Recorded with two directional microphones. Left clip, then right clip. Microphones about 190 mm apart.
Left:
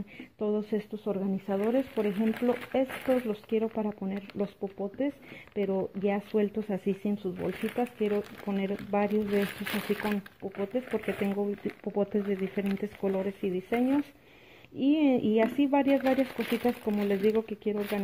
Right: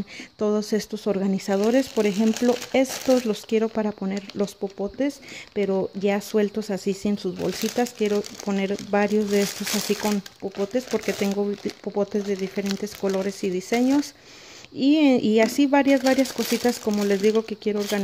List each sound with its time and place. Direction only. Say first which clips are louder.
0.4 s speech: right 7 dB; 30° right (ahead or behind)
7.3 s speech: right 7 dB; 35° right (ahead or behind)
11.8 s speech: right 4 dB; 15° right (ahead or behind)